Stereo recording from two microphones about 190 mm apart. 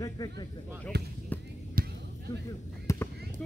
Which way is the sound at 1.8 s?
50° right (ahead or behind).